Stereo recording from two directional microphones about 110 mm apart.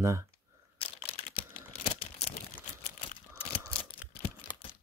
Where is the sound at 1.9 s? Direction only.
60° left (ahead or behind).